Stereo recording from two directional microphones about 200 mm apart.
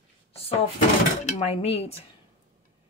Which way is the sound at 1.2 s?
30° left (ahead or behind).